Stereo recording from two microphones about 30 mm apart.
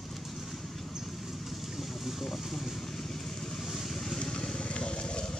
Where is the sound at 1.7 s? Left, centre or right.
Centre.